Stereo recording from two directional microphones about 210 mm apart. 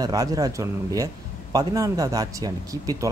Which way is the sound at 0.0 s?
15° right (ahead or behind).